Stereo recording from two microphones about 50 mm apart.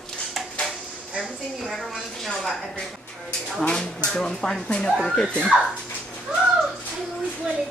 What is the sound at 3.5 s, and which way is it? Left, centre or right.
A woman's voice, centre.